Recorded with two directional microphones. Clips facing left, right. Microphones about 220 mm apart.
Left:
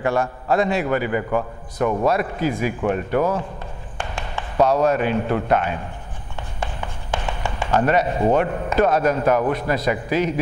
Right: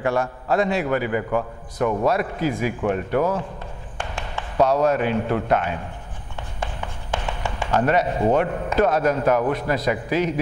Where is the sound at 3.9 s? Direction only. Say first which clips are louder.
Left 1 dB; 15° left (ahead or behind).